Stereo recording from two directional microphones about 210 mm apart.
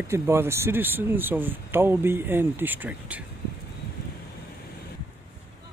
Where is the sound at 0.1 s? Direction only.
10° right (ahead or behind).